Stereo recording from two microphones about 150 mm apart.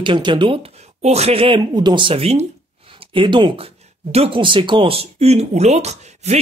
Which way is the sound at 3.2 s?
30° right (ahead or behind).